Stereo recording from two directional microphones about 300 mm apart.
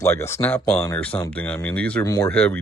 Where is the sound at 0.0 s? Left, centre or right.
Centre.